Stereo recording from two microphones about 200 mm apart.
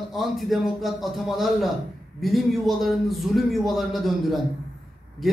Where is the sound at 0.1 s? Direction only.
Centre (ahead or behind).